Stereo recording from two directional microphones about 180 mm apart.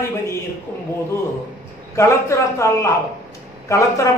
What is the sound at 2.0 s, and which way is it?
A man's voice, 15° left (ahead or behind).